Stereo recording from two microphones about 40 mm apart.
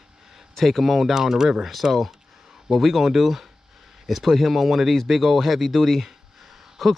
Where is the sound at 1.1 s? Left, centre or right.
Centre.